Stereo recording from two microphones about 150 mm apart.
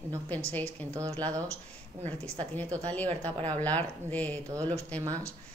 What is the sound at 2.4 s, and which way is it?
Speech, 10° left (ahead or behind).